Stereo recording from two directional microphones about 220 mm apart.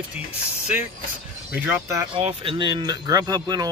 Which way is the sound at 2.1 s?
25° right (ahead or behind).